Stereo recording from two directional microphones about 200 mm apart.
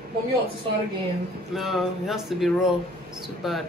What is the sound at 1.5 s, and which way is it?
A woman's voice, centre (ahead or behind).